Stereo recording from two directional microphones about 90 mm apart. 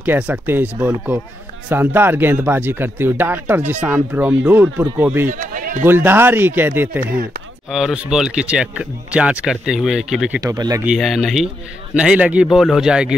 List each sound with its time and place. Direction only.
0.0 s speech: 20° right (ahead or behind)
7.7 s speech: 5° right (ahead or behind)
10.4 s speech: 45° right (ahead or behind)
11.0 s speech: centre (ahead or behind)
12.4 s speech: 5° right (ahead or behind)